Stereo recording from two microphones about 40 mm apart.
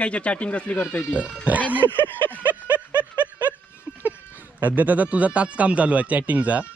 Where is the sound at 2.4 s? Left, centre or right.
Right.